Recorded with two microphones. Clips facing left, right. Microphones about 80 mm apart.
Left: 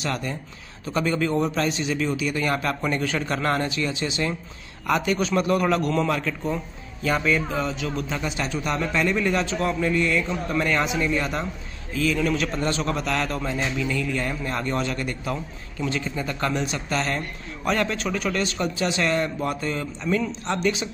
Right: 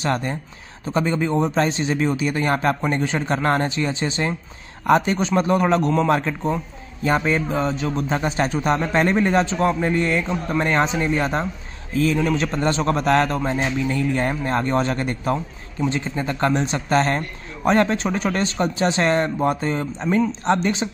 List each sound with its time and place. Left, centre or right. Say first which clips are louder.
0.0 s speech: right 5 dB; right
0.8 s a man's voice: right 2 dB; right